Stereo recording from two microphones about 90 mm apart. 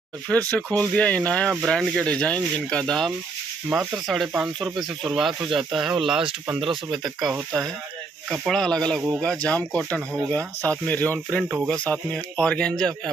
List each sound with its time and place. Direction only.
0.3 s speech: 15° left (ahead or behind)
3.7 s speech: centre (ahead or behind)
6.6 s speech: 60° right (ahead or behind)
7.0 s speech: centre (ahead or behind)